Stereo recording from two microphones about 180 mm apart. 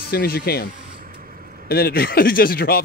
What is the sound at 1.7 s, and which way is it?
Speech, 60° left (ahead or behind).